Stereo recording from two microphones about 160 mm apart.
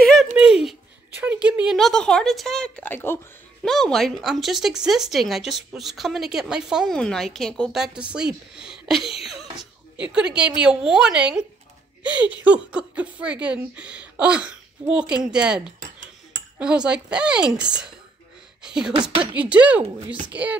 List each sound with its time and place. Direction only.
0.3 s a sound: 5° right (ahead or behind)
1.2 s speech: 10° right (ahead or behind); by 3.2 s 15° left (ahead or behind)
3.6 s a woman's voice: centre (ahead or behind)
15.8 s cutlery: 50° right (ahead or behind)
16.5 s a woman's voice: 5° right (ahead or behind)